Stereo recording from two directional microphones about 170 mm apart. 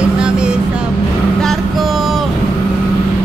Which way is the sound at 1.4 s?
Centre (ahead or behind).